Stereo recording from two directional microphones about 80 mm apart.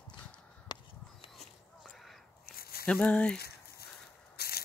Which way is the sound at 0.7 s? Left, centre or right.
Left.